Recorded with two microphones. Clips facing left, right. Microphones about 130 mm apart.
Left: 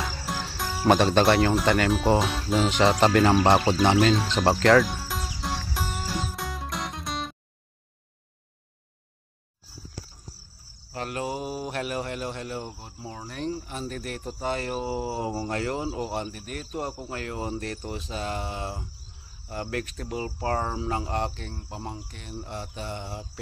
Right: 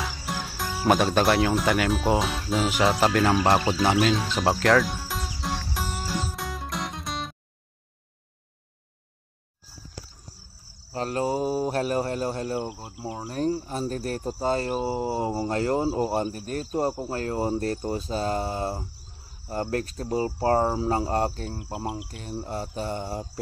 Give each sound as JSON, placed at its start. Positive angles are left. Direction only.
{"t": 0.0, "sound": "cricket", "side_deg": 0}
{"t": 10.9, "sound": "speech", "side_deg": -35}
{"t": 21.7, "sound": "cricket", "side_deg": -10}
{"t": 22.1, "sound": "speech", "side_deg": -35}